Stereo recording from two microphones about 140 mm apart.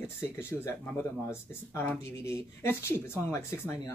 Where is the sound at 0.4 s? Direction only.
15° left (ahead or behind).